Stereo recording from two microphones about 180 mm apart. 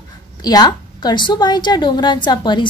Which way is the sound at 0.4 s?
20° left (ahead or behind).